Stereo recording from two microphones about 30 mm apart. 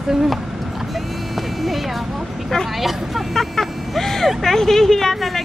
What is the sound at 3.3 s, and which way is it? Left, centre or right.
Speech, centre.